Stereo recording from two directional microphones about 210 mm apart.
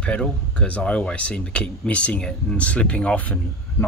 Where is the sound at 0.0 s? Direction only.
5° left (ahead or behind).